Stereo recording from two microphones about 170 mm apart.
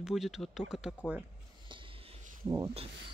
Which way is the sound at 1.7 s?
30° right (ahead or behind).